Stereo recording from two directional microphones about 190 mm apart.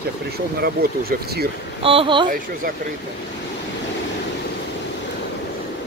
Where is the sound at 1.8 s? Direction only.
25° right (ahead or behind).